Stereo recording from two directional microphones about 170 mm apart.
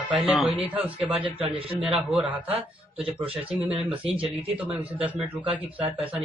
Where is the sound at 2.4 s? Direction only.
35° right (ahead or behind).